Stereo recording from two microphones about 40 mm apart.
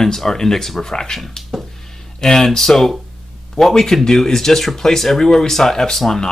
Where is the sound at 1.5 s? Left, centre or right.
Centre.